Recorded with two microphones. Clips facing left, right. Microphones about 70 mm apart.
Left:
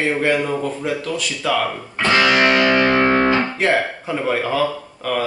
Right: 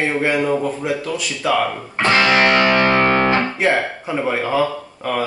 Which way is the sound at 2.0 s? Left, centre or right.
Right.